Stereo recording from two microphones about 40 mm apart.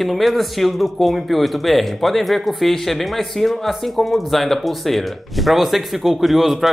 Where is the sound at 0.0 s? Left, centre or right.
Centre.